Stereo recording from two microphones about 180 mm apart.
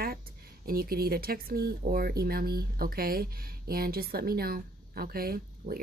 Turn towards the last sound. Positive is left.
turn(degrees=-55)  # may be behind; listen again after turning